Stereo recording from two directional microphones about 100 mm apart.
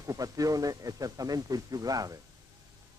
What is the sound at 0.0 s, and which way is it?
Speech, 35° right (ahead or behind).